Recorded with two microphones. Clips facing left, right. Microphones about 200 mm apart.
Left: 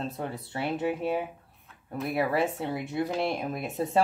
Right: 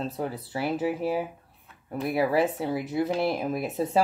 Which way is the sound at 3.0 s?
30° right (ahead or behind).